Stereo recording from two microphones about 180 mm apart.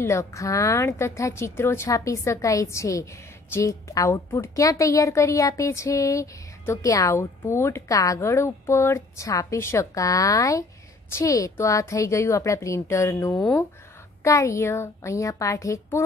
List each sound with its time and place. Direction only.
0.0 s a woman's voice: 15° left (ahead or behind)